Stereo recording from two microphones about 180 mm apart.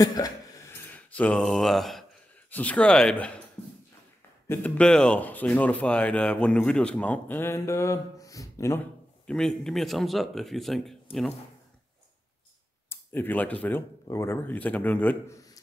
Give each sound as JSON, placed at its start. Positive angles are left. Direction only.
{"t": 0.0, "sound": "a sound", "side_deg": 20}
{"t": 0.8, "sound": "speech", "side_deg": 10}
{"t": 4.5, "sound": "speech", "side_deg": 10}
{"t": 12.9, "sound": "speech", "side_deg": 10}